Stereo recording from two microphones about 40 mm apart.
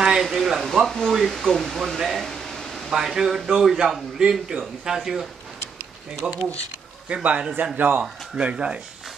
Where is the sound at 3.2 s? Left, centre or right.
Centre.